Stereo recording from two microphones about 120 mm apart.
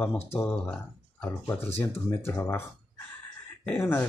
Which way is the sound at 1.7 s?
20° left (ahead or behind).